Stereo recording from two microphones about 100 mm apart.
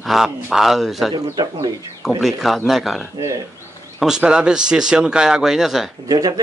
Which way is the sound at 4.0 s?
10° right (ahead or behind).